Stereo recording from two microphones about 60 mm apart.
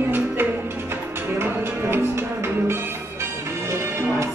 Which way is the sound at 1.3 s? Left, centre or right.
Right.